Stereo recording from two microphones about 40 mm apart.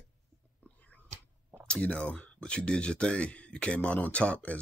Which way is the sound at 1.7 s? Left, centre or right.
Left.